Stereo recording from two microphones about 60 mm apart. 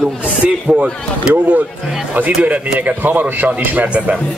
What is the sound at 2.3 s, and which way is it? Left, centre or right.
A man's voice, right.